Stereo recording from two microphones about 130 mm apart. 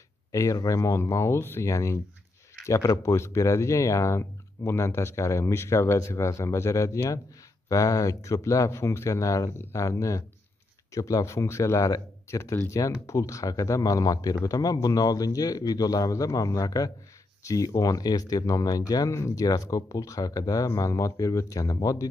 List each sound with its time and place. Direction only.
0.3 s speech: 25° left (ahead or behind)